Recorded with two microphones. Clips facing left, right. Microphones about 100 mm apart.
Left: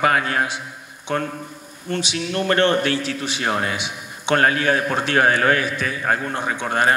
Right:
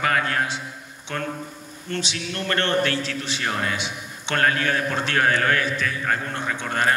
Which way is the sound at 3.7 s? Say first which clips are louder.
Left 1 dB; 15° left (ahead or behind).